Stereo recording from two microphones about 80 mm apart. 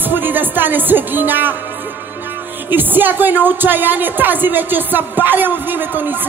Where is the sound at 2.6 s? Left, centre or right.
Right.